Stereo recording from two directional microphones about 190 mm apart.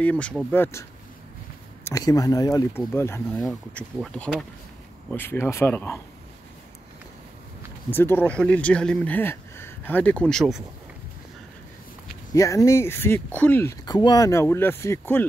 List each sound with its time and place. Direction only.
0.0 s speech: 5° left (ahead or behind)
1.9 s speech: 20° left (ahead or behind)
3.3 s speech: centre (ahead or behind)
7.9 s speech: 10° left (ahead or behind)
12.4 s speech: 15° left (ahead or behind)